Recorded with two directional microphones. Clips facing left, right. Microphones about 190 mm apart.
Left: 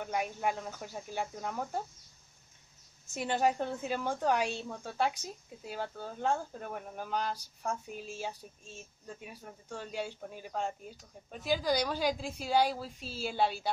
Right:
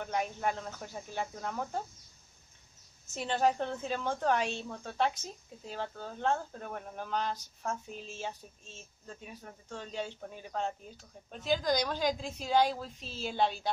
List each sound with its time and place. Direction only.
0.0 s a woman's voice: 5° left (ahead or behind)
3.2 s a woman's voice: 10° left (ahead or behind)